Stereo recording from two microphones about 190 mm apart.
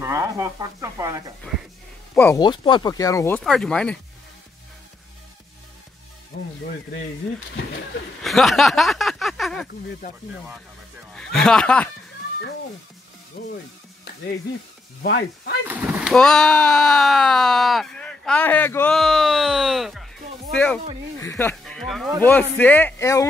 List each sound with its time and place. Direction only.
0.0 s speech: 15° right (ahead or behind)
2.1 s speech: 10° left (ahead or behind)
2.4 s speech: 25° left (ahead or behind); by 4.0 s 5° left (ahead or behind)
6.3 s music: 55° left (ahead or behind)
8.2 s a sound: centre (ahead or behind)
11.1 s speech: 5° left (ahead or behind)
15.0 s speech: 60° left (ahead or behind)
15.7 s speech: centre (ahead or behind); by 23.2 s 15° left (ahead or behind)